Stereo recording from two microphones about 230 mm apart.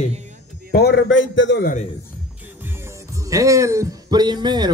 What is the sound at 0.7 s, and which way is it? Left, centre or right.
A man's voice, left.